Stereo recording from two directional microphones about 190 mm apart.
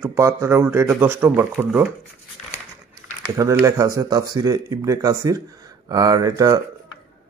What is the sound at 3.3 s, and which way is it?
A man's voice, 15° right (ahead or behind).